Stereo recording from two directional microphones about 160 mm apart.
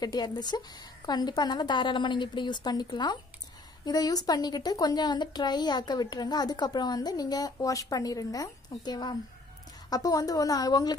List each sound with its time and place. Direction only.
0.0 s a woman's voice: 25° left (ahead or behind)